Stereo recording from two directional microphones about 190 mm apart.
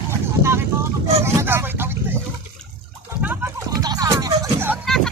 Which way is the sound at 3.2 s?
10° right (ahead or behind).